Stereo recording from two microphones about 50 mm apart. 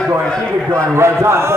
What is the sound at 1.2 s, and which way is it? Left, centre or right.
Speech, right.